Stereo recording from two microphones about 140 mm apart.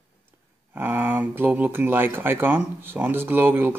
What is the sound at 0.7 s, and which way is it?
Speech, 15° right (ahead or behind).